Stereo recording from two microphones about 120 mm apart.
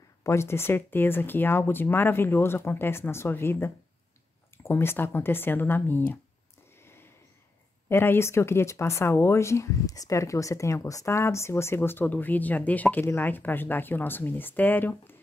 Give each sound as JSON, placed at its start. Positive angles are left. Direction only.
{"t": 0.2, "sound": "speech", "side_deg": 25}
{"t": 6.8, "sound": "a sound", "side_deg": 20}
{"t": 7.9, "sound": "speech", "side_deg": 20}